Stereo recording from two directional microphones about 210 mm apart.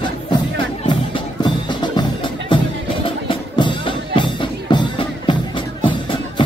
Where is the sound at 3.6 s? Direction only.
20° left (ahead or behind).